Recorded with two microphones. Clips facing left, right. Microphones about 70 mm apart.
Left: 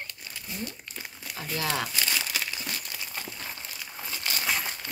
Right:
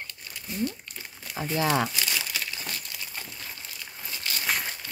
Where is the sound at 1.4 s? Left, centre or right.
Right.